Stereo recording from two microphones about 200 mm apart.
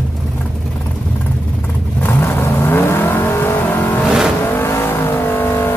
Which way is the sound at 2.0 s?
10° left (ahead or behind).